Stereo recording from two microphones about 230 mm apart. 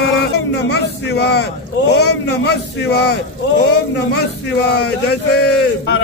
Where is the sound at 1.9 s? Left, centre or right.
Left.